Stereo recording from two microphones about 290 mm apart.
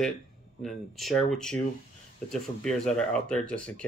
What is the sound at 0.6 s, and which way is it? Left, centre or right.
Speech, centre.